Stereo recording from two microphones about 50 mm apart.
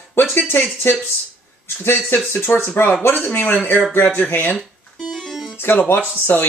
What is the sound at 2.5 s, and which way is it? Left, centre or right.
Speech, left.